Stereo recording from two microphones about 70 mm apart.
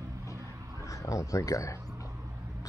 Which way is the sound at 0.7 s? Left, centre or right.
Left.